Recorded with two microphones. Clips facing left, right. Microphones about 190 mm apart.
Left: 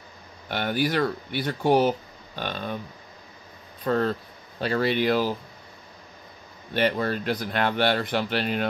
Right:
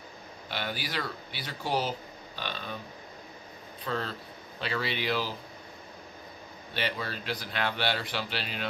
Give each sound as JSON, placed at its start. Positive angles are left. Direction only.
{"t": 0.5, "sound": "speech", "side_deg": 50}
{"t": 3.8, "sound": "speech", "side_deg": 50}
{"t": 6.7, "sound": "speech", "side_deg": 50}